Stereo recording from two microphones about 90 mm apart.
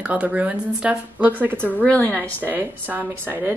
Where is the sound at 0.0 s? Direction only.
15° right (ahead or behind).